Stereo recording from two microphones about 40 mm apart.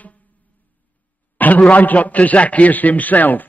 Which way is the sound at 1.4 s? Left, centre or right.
Left.